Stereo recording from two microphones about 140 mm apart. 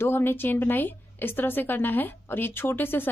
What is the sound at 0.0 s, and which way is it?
A woman's voice, 15° left (ahead or behind).